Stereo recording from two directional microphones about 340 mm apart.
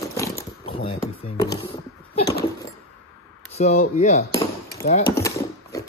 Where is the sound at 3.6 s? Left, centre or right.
Centre.